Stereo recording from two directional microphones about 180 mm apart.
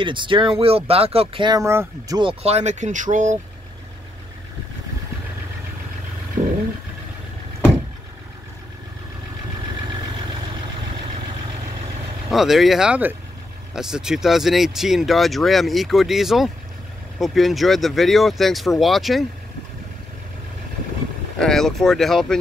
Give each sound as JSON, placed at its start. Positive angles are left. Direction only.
{"t": 0.0, "sound": "speech", "side_deg": -25}
{"t": 6.4, "sound": "vehicle", "side_deg": -35}
{"t": 12.3, "sound": "speech", "side_deg": 0}
{"t": 21.4, "sound": "speech", "side_deg": 0}